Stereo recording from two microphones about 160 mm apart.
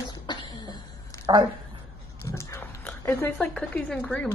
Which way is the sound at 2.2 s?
15° left (ahead or behind).